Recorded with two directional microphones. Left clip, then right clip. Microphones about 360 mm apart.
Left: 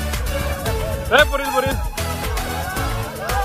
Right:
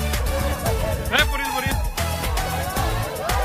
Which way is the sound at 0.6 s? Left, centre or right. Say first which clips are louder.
Left 2 dB; centre.